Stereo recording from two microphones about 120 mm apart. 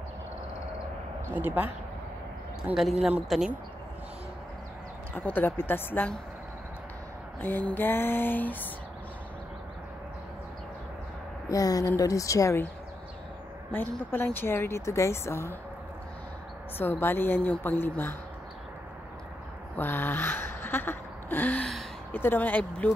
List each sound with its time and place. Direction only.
1.3 s speech: 15° right (ahead or behind)
5.1 s a woman's voice: 15° left (ahead or behind)
7.4 s a woman's voice: 15° left (ahead or behind)
11.4 s a woman's voice: 30° left (ahead or behind)
13.7 s a woman's voice: 15° left (ahead or behind)
16.7 s a woman's voice: 15° left (ahead or behind)
19.8 s a woman's voice: 15° left (ahead or behind)